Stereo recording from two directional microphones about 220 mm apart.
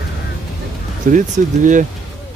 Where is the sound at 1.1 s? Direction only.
35° right (ahead or behind).